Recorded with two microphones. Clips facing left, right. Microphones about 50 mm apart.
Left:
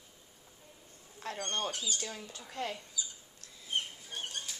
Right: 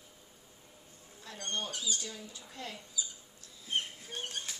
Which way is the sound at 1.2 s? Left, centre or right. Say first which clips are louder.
Left 3 dB; left.